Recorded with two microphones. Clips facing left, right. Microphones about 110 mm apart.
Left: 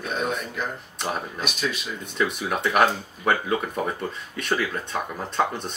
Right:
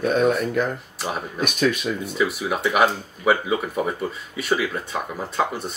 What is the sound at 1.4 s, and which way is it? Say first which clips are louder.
Speech: right 7 dB; 50° right (ahead or behind).